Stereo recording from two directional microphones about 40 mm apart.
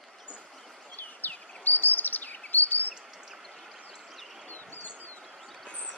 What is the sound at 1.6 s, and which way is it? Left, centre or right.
Chirp, left.